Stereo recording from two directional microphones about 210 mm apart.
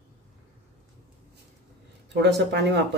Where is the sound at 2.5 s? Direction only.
55° right (ahead or behind).